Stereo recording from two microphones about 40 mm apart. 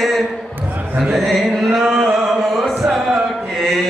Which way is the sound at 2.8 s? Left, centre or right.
Centre.